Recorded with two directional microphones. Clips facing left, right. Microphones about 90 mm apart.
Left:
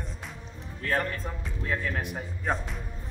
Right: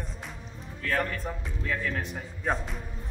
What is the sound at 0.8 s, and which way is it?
Speech, 30° left (ahead or behind).